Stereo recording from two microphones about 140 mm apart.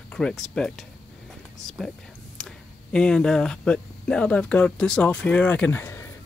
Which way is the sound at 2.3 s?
5° left (ahead or behind).